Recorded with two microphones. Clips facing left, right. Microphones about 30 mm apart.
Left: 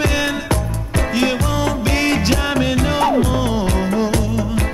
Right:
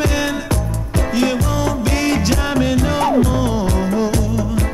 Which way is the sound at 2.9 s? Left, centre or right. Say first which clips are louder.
Even; left.